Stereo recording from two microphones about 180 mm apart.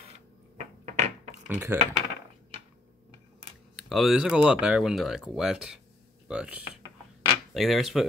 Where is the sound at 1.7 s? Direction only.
10° right (ahead or behind).